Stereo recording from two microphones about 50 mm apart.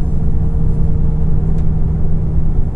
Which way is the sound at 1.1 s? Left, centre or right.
Centre.